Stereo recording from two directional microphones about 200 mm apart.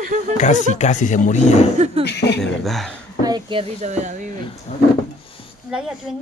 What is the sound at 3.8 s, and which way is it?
Speech, 35° right (ahead or behind).